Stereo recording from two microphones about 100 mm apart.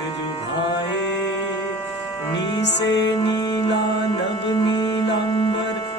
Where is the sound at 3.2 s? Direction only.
45° left (ahead or behind).